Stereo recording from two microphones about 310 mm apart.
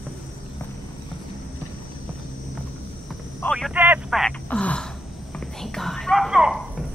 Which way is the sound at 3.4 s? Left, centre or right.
Centre.